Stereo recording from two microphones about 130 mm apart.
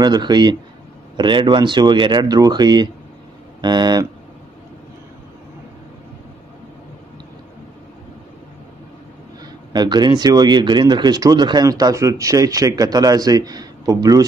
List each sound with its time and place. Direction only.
0.0 s speech: 35° right (ahead or behind)
9.7 s speech: 35° right (ahead or behind)